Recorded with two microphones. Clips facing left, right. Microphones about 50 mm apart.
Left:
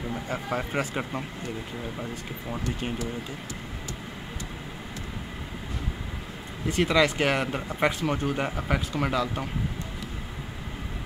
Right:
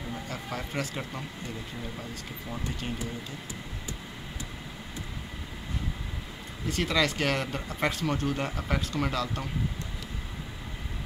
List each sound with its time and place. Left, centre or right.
0.3 s speech: left
6.7 s speech: centre